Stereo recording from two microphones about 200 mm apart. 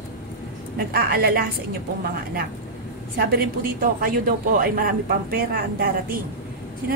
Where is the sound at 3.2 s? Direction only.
50° right (ahead or behind).